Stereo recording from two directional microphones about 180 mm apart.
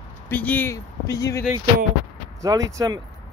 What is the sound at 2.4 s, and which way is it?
Speech, 20° right (ahead or behind).